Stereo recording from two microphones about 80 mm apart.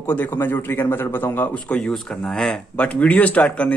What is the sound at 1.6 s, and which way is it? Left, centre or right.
Speech, centre.